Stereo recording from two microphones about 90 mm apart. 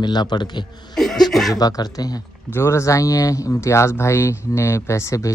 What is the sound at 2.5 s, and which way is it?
Speech, 30° left (ahead or behind).